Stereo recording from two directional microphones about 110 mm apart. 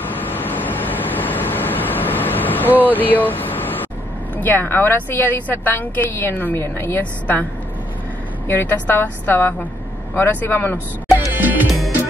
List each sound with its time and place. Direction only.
0.1 s vehicle: 15° left (ahead or behind)
2.9 s a woman's voice: 15° left (ahead or behind)
8.5 s a woman's voice: 20° left (ahead or behind)
11.3 s music: 20° right (ahead or behind)